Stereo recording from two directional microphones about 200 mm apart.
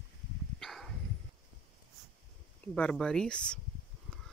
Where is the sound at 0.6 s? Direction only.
Centre (ahead or behind).